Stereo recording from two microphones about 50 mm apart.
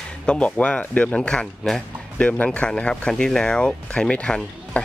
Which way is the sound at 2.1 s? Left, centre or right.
Left.